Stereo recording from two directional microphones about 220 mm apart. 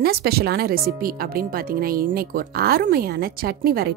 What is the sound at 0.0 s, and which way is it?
Speech, 45° right (ahead or behind).